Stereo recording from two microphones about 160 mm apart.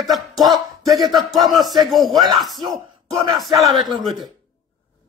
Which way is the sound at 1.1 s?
Centre (ahead or behind).